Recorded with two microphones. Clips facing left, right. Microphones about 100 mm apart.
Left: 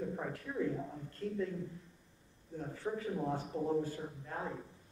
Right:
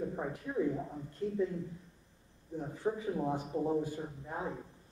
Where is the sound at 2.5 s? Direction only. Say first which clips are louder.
Right 4 dB; 20° right (ahead or behind).